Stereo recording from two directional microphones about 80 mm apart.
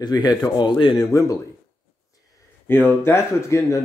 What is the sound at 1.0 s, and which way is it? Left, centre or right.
Speech, left.